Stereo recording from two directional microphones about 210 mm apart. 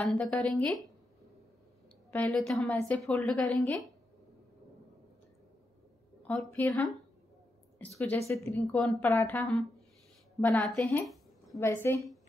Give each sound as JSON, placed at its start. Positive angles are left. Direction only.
{"t": 0.0, "sound": "a woman's voice", "side_deg": 5}
{"t": 2.0, "sound": "a woman's voice", "side_deg": 5}
{"t": 6.2, "sound": "a woman's voice", "side_deg": 5}
{"t": 8.3, "sound": "a woman's voice", "side_deg": 15}